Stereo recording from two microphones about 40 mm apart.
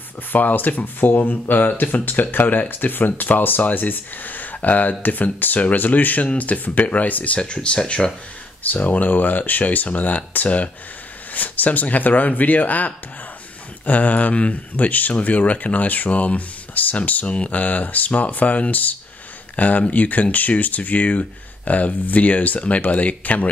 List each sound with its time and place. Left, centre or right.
0.3 s speech: left
7.3 s speech: left
8.6 s speech: left